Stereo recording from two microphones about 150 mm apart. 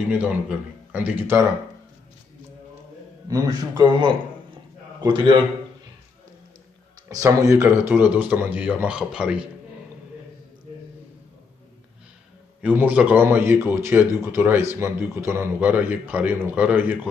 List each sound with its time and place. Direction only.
0.1 s a man's voice: 10° right (ahead or behind)
3.3 s a man's voice: 25° right (ahead or behind)
7.1 s a man's voice: 20° right (ahead or behind); by 9.5 s 5° right (ahead or behind)
12.6 s a man's voice: 10° right (ahead or behind)